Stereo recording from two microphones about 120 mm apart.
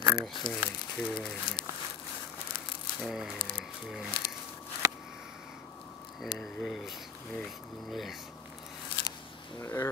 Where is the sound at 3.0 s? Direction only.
5° right (ahead or behind).